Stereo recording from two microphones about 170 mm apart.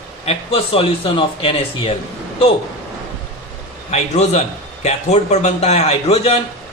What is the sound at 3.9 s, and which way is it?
A man's voice, 40° left (ahead or behind).